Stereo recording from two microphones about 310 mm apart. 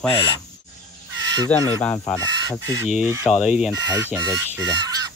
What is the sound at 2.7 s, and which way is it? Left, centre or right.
Speech, centre.